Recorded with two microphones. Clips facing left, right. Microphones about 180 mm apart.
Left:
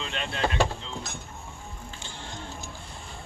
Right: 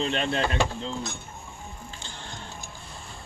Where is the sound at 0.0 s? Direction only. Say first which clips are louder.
Right 4 dB; 40° right (ahead or behind).